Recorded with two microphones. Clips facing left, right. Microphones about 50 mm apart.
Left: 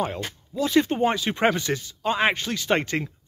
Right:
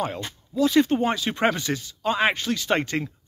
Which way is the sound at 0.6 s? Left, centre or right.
Centre.